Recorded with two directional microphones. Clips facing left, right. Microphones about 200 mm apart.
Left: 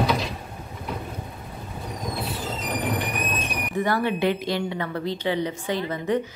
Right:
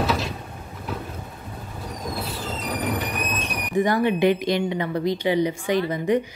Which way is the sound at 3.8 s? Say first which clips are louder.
Right 4 dB; 15° right (ahead or behind).